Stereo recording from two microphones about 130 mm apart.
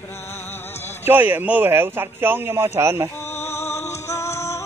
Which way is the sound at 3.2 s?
20° left (ahead or behind).